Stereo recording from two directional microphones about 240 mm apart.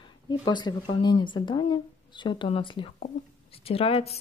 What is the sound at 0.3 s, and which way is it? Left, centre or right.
Speech, centre.